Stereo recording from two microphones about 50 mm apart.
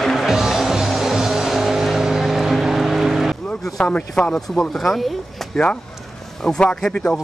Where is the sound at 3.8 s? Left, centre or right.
Left.